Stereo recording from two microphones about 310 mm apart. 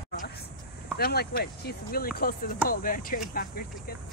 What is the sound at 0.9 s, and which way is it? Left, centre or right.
Speech, left.